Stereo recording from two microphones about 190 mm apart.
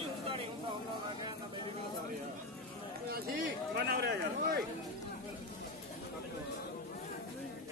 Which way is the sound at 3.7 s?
55° right (ahead or behind).